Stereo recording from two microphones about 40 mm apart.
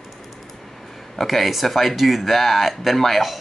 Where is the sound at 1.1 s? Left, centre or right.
Centre.